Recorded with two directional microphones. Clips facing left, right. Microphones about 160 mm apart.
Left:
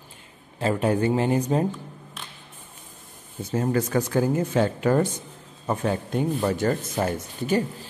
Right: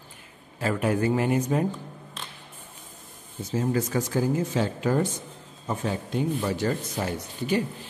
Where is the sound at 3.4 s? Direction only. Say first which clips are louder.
Left 2 dB; 60° left (ahead or behind).